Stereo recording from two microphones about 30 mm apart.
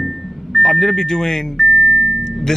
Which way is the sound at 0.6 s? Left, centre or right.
Centre.